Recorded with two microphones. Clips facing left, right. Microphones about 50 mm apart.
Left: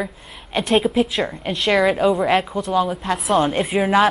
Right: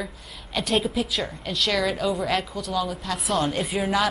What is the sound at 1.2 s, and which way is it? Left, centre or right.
A woman's voice, left.